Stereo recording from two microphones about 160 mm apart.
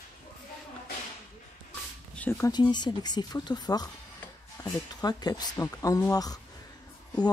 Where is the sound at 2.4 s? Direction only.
25° left (ahead or behind).